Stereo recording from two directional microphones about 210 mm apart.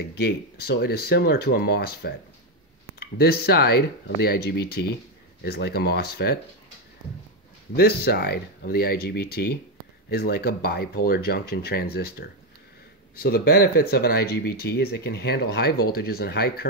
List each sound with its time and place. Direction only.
0.2 s speech: 50° left (ahead or behind)
7.7 s speech: 45° left (ahead or behind)